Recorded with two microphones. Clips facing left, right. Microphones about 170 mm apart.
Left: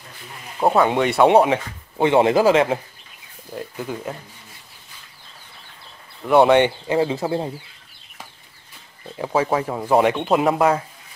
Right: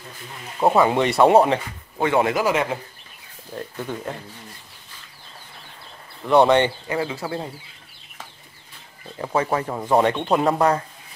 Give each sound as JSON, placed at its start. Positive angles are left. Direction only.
{"t": 0.6, "sound": "speech", "side_deg": 0}
{"t": 2.0, "sound": "speech", "side_deg": 25}
{"t": 3.5, "sound": "speech", "side_deg": 5}
{"t": 6.2, "sound": "speech", "side_deg": 10}
{"t": 6.9, "sound": "speech", "side_deg": 25}
{"t": 9.2, "sound": "speech", "side_deg": 5}